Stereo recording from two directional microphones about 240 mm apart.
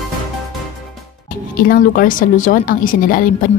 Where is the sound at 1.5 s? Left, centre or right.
Left.